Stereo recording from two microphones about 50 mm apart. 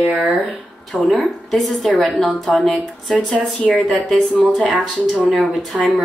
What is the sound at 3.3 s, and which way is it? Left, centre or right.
Speech, left.